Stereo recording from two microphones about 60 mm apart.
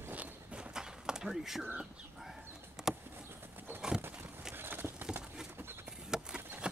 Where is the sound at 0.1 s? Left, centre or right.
Right.